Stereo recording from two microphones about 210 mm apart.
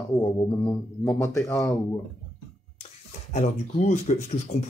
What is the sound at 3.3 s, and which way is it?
Speech, 35° left (ahead or behind).